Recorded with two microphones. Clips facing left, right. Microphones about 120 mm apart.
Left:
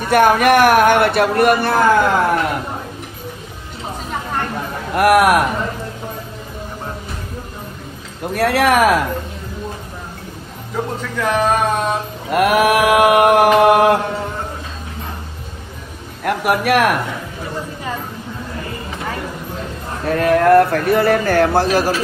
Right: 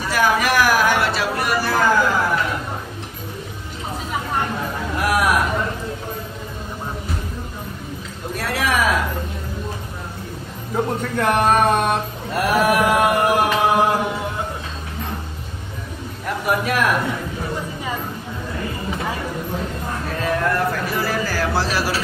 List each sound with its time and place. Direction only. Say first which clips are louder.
0.0 s speech: left 6 dB; 55° left (ahead or behind)
4.9 s speech: left 8 dB; 65° left (ahead or behind)
8.4 s mantra: left 8 dB; 65° left (ahead or behind)
11.1 s a sound: even; 55° right (ahead or behind)
12.3 s mantra: left 4 dB; 70° left (ahead or behind)
16.3 s mantra: left 5 dB; 70° left (ahead or behind)
20.1 s speech: left 10 dB; 65° left (ahead or behind)